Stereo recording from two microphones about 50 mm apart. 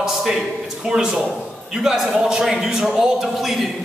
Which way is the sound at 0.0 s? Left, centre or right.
Centre.